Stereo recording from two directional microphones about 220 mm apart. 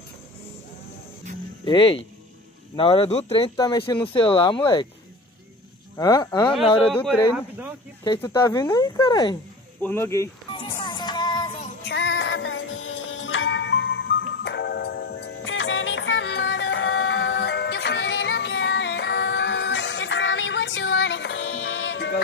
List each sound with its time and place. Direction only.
1.6 s speech: 20° left (ahead or behind)
5.9 s speech: 20° left (ahead or behind)
6.8 s speech: 5° left (ahead or behind)
7.3 s speech: 5° right (ahead or behind)
8.0 s speech: 20° left (ahead or behind)
10.8 s music: 20° left (ahead or behind)
11.8 s music: 55° left (ahead or behind)